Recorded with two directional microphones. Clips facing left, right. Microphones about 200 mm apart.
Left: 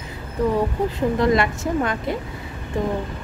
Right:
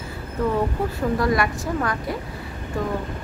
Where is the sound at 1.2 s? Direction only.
25° left (ahead or behind).